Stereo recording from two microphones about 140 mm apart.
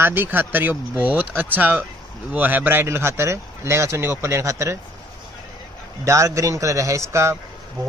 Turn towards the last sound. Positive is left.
turn(degrees=-20)  # may be behind; listen again after turning